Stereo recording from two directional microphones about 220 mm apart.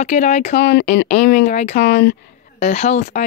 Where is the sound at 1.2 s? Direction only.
35° left (ahead or behind).